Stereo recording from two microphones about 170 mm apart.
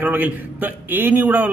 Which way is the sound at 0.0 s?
10° right (ahead or behind).